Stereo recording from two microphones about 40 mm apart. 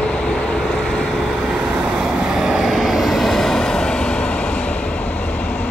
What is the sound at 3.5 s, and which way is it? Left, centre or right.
Vehicle, centre.